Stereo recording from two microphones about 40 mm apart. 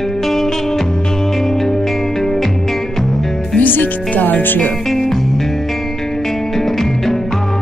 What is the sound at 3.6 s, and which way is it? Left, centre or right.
Music, left.